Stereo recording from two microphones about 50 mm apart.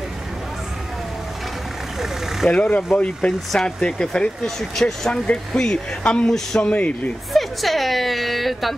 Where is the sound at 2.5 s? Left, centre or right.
Left.